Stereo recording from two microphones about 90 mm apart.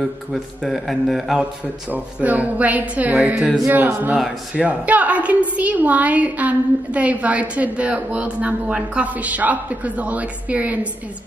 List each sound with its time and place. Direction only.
0.3 s a man's voice: centre (ahead or behind)
1.9 s a woman's voice: 15° right (ahead or behind)